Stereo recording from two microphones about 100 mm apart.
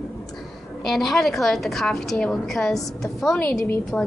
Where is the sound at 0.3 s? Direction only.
Centre (ahead or behind).